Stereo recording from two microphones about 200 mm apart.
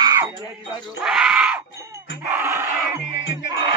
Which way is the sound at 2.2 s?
10° right (ahead or behind).